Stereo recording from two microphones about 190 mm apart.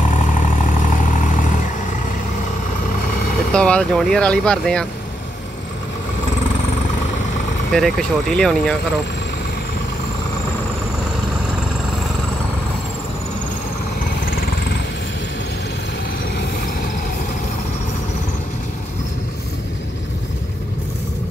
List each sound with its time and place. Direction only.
0.0 s vehicle: 40° left (ahead or behind)
3.5 s speech: 5° left (ahead or behind)
7.7 s speech: centre (ahead or behind)
14.2 s vehicle: 50° left (ahead or behind)